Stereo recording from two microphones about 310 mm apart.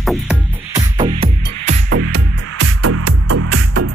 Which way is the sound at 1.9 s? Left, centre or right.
Right.